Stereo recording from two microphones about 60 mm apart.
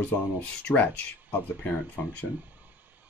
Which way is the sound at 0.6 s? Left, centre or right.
Left.